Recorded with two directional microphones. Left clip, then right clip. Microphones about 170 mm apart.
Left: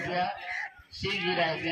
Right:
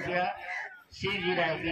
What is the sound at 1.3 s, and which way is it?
Speech, 45° left (ahead or behind).